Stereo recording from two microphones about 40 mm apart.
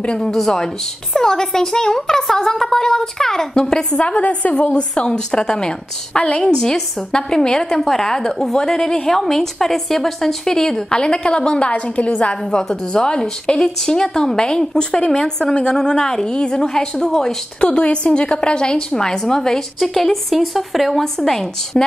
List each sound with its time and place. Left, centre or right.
0.3 s a woman's voice: centre
4.0 s a woman's voice: left
12.4 s a woman's voice: centre